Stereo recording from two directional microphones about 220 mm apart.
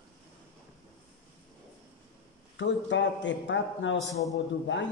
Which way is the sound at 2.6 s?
55° left (ahead or behind).